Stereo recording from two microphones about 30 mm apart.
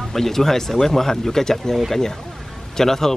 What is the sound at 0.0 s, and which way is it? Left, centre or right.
Speech, centre.